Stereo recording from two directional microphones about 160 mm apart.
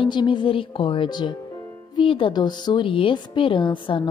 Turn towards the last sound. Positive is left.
turn(degrees=30)  # may be behind; listen again after turning